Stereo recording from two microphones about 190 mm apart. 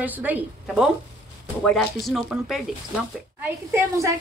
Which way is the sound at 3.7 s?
15° right (ahead or behind).